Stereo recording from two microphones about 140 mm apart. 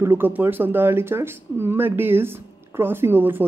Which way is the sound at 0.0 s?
15° right (ahead or behind).